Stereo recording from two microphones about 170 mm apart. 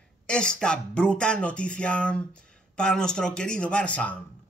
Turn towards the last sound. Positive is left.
turn(degrees=10)  # may be behind; listen again after turning